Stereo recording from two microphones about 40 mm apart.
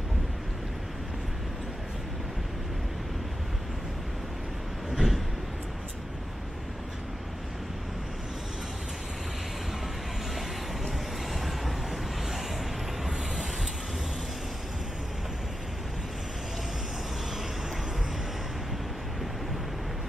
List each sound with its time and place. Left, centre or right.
4.9 s train: centre
11.3 s vehicle: centre